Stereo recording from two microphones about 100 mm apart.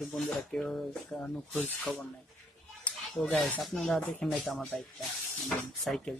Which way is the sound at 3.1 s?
Centre (ahead or behind).